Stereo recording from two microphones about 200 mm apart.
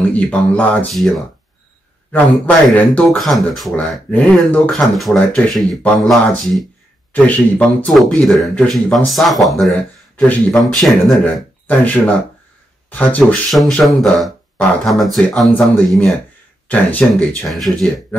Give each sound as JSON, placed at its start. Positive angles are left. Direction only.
{"t": 0.1, "sound": "speech", "side_deg": 5}
{"t": 2.1, "sound": "speech", "side_deg": 5}